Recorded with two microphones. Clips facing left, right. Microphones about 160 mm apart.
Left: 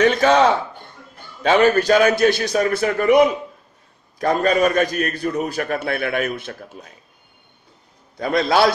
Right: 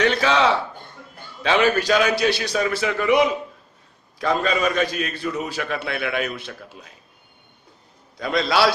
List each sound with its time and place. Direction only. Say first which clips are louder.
0.0 s a man's voice: left 4 dB; 50° left (ahead or behind)
8.2 s a man's voice: left 3 dB; 55° left (ahead or behind)